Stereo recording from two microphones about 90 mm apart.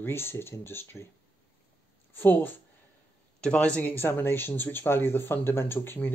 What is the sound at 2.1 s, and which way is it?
Speech, 20° left (ahead or behind).